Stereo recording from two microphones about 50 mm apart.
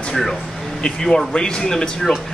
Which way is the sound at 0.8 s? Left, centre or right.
Centre.